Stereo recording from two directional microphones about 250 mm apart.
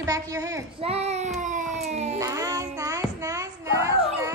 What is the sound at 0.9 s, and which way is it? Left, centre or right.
Child singing, right.